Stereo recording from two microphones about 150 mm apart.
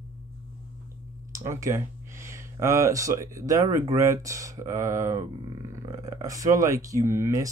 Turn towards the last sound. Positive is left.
turn(degrees=-20)  # may be behind; listen again after turning